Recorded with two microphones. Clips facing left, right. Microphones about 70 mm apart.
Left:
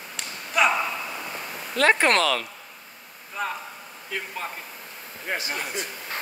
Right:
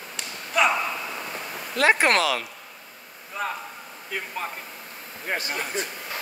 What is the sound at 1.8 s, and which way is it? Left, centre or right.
Speech, centre.